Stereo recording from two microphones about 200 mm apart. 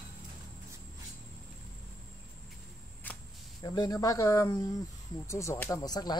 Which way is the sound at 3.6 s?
20° left (ahead or behind).